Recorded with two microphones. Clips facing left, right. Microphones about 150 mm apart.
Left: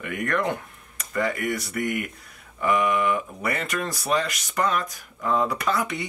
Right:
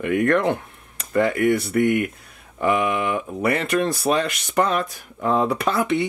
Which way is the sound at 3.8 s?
25° right (ahead or behind).